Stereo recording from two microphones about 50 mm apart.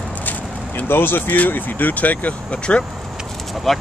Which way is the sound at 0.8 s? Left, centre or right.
Left.